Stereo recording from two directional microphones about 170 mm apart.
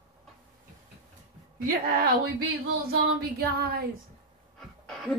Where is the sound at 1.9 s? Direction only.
65° right (ahead or behind).